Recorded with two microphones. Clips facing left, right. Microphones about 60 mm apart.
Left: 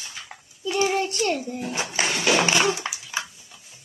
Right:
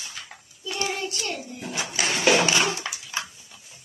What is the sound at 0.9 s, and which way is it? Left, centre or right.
A child's voice, left.